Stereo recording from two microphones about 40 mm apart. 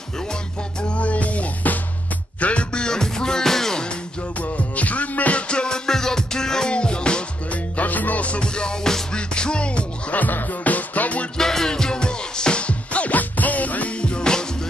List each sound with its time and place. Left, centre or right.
0.8 s music: left
2.4 s music: left; by 3.8 s centre
4.4 s music: left
5.5 s music: centre
7.7 s music: left
10.1 s music: left
11.3 s music: centre